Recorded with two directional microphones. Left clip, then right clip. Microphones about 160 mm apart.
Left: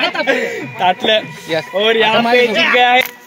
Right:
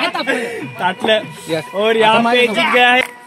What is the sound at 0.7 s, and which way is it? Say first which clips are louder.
Speech: left 2 dB; 85° right.